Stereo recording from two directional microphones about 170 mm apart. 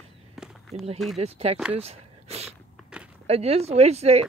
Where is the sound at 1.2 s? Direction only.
35° right (ahead or behind).